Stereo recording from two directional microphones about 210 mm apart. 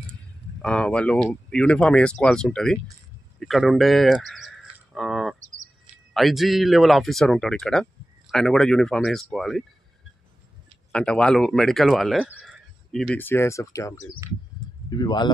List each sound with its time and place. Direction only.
0.6 s speech: 5° left (ahead or behind)
10.9 s speech: 5° left (ahead or behind); by 15.3 s 20° left (ahead or behind)